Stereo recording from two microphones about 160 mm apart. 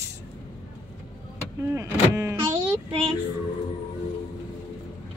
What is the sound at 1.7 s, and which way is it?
Vehicle, 20° right (ahead or behind).